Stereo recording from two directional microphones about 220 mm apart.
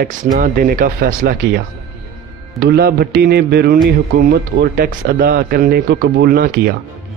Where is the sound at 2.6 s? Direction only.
45° right (ahead or behind).